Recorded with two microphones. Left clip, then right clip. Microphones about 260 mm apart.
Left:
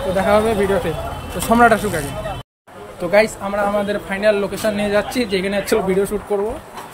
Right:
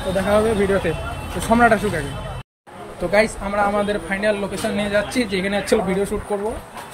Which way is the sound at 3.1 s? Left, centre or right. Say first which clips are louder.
Left 3 dB; centre.